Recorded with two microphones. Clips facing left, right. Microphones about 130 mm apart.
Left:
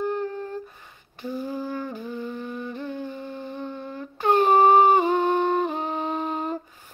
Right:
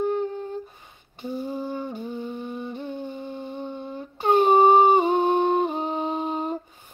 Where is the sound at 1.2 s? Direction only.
20° right (ahead or behind).